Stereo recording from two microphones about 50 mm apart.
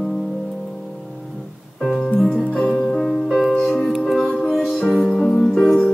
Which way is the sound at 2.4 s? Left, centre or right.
Left.